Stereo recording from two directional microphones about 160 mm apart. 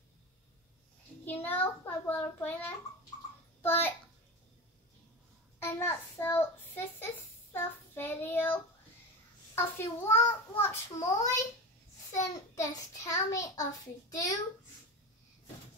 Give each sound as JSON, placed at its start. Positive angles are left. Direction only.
{"t": 1.2, "sound": "a child's voice", "side_deg": 10}
{"t": 5.6, "sound": "a child's voice", "side_deg": 15}
{"t": 7.5, "sound": "child singing", "side_deg": 15}
{"t": 9.6, "sound": "a child's voice", "side_deg": 15}